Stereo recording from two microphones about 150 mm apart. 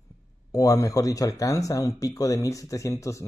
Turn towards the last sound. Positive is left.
turn(degrees=20)  # may be behind; listen again after turning